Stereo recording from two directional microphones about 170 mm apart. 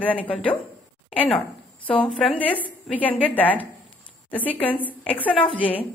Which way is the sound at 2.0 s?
Centre (ahead or behind).